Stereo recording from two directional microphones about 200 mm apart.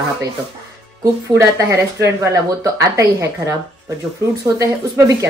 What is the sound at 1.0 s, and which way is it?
A woman's voice, 15° right (ahead or behind).